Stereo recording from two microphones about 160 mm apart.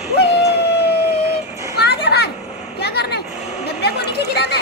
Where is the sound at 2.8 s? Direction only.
90° left.